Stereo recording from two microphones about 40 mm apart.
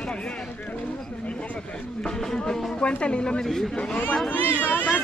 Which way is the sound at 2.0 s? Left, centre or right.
Centre.